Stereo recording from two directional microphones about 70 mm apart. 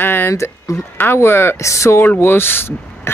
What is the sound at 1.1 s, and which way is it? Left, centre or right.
Speech, left.